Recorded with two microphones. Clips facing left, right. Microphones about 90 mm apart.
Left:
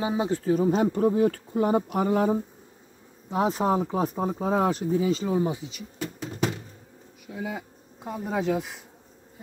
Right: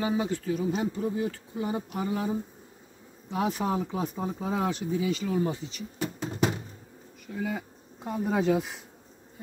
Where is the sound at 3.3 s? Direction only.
35° left (ahead or behind).